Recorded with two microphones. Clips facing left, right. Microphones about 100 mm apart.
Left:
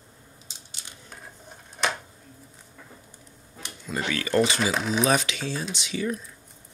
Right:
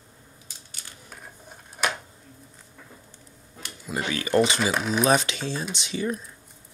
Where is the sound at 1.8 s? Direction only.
5° right (ahead or behind).